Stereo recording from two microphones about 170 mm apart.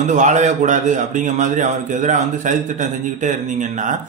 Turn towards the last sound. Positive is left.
turn(degrees=-45)  # may be behind; listen again after turning